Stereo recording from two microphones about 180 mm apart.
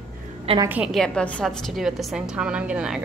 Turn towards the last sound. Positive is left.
turn(degrees=-5)  # may be behind; listen again after turning